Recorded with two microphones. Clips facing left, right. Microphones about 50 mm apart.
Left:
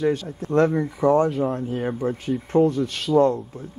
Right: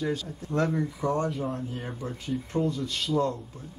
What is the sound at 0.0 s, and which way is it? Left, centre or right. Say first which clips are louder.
Speech: left 8 dB; left.